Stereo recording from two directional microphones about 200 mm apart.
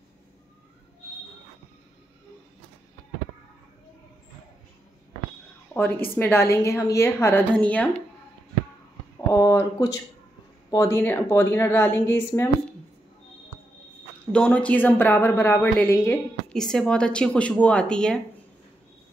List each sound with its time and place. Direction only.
5.8 s a woman's voice: 10° left (ahead or behind)
9.3 s a woman's voice: 15° left (ahead or behind)
14.3 s a woman's voice: 5° left (ahead or behind)